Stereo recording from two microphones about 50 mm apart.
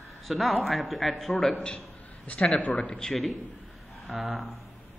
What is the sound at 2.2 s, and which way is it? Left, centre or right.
Speech, left.